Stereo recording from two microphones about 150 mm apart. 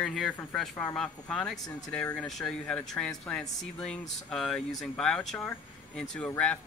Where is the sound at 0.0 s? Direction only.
Centre (ahead or behind).